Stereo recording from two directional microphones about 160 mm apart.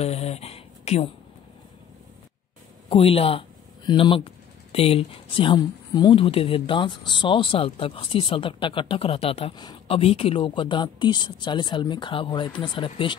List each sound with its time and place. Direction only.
0.0 s speech: 40° left (ahead or behind)
2.9 s speech: 35° left (ahead or behind)